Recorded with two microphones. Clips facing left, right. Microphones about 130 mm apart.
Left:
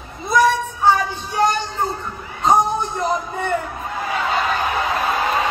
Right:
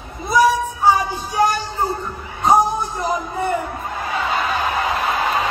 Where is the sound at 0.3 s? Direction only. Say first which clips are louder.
Right 1 dB; 10° right (ahead or behind).